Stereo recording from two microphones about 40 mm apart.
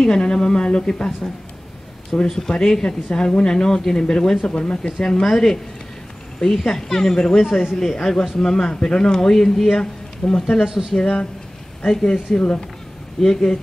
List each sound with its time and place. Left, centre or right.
0.0 s speech: centre
2.2 s speech: centre; by 4.9 s left
5.2 s speech: centre
10.6 s speech: centre
11.0 s speech: centre